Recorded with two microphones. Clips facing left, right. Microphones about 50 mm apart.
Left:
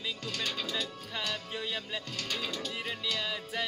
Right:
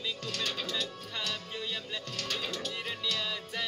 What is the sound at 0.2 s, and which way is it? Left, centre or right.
Speech, centre.